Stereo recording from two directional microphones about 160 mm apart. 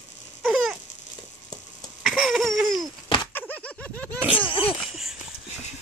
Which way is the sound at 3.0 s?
30° left (ahead or behind).